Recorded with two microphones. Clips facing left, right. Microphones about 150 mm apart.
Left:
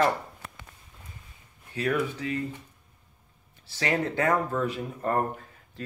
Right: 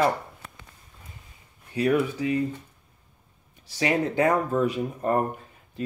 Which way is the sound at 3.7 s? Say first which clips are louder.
Right 3 dB; 15° right (ahead or behind).